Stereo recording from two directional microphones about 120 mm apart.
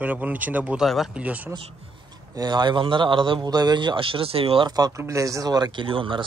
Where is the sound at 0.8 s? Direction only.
Centre (ahead or behind).